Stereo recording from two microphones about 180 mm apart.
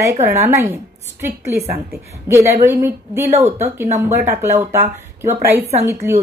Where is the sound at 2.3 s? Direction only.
15° right (ahead or behind).